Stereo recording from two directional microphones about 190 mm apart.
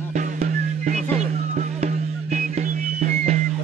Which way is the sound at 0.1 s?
40° right (ahead or behind).